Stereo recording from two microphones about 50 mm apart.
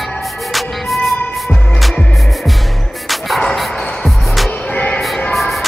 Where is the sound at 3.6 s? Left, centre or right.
Centre.